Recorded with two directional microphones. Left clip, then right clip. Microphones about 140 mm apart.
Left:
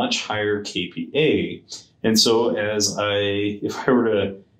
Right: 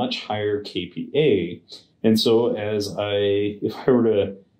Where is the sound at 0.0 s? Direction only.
40° right (ahead or behind).